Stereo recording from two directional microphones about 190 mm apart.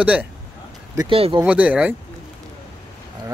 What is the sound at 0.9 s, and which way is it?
Speech, 30° right (ahead or behind).